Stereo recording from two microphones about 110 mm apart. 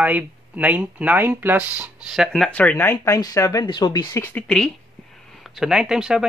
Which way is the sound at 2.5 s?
15° left (ahead or behind).